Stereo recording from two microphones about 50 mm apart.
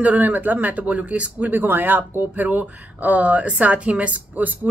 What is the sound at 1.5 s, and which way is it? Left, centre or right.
Speech, right.